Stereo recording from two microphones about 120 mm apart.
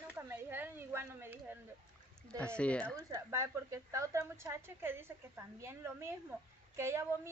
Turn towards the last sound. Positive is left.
turn(degrees=-25)  # may be behind; listen again after turning